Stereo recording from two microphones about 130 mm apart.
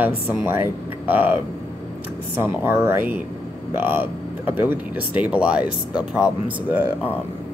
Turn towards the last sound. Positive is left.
turn(degrees=-10)  # may be behind; listen again after turning